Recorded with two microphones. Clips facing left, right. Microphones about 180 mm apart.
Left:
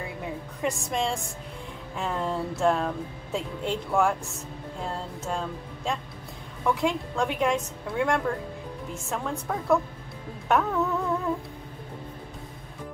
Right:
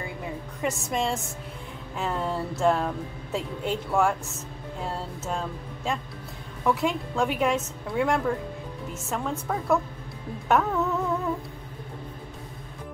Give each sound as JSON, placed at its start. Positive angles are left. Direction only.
{"t": 0.6, "sound": "a woman's voice", "side_deg": 0}